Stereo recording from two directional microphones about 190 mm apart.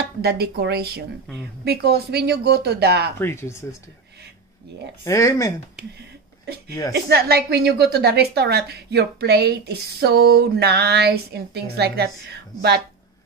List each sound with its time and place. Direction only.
0.2 s a woman's voice: 55° right (ahead or behind)
3.2 s speech: 15° left (ahead or behind)
5.0 s speech: 15° left (ahead or behind)
7.1 s a woman's voice: 55° right (ahead or behind)